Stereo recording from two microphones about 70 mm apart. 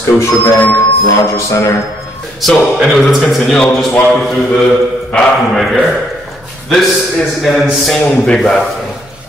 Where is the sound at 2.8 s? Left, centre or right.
Centre.